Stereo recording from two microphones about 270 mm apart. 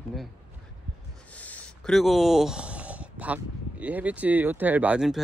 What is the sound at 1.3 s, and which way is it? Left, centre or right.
Speech, centre.